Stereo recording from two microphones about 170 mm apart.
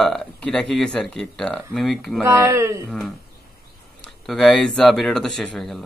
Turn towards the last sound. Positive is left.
turn(degrees=0)  # may be behind; listen again after turning